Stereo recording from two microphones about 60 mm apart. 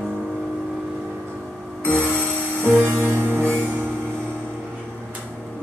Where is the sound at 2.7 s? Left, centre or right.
Right.